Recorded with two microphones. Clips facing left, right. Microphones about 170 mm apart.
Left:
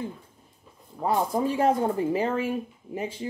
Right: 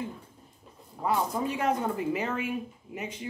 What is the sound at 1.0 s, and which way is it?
Speech, 30° left (ahead or behind).